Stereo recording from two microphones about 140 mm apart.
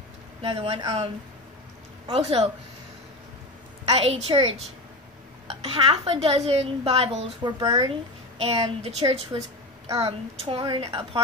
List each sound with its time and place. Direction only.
0.4 s speech: 40° right (ahead or behind)
3.9 s speech: 45° right (ahead or behind); by 7.9 s 30° right (ahead or behind)
8.4 s speech: 45° right (ahead or behind)